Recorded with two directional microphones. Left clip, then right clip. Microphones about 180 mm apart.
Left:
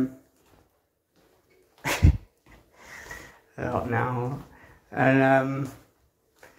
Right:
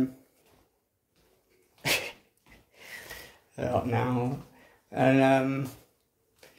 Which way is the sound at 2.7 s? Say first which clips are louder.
Even; 45° right (ahead or behind).